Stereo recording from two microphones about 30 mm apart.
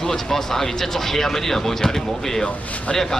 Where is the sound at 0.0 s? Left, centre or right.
Centre.